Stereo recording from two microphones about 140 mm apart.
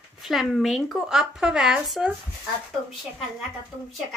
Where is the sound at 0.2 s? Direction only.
Centre (ahead or behind).